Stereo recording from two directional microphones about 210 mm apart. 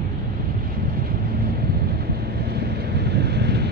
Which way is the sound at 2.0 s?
50° right (ahead or behind).